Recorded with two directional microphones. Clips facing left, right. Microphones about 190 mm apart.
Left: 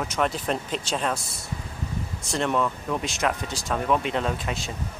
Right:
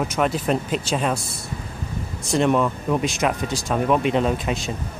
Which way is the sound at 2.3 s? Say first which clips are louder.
Right 6 dB; 15° right (ahead or behind).